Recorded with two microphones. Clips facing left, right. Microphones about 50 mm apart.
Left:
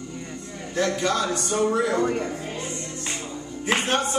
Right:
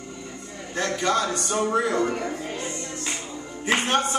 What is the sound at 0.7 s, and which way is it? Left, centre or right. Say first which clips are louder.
A man's voice: even; right.